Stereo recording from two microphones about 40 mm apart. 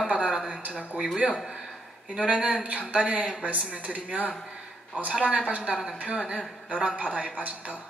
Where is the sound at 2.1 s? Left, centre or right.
Right.